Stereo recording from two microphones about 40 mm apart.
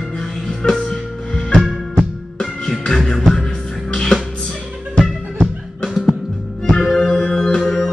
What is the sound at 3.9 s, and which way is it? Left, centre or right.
Music, left.